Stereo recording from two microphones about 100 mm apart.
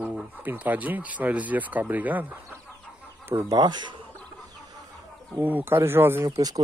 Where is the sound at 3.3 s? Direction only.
30° right (ahead or behind).